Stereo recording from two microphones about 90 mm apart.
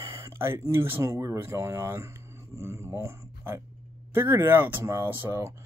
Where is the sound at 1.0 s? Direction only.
35° right (ahead or behind).